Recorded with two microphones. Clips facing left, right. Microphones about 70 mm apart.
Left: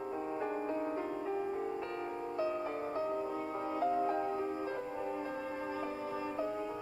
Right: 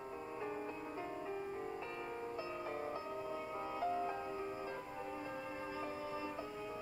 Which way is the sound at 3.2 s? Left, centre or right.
Left.